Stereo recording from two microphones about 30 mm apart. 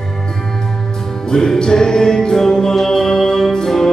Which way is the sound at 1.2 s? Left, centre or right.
Centre.